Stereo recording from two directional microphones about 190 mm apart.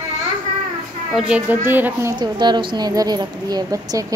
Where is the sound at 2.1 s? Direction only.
25° right (ahead or behind).